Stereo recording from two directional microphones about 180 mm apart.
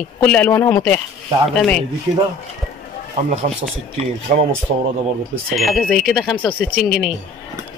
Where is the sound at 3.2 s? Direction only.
45° right (ahead or behind).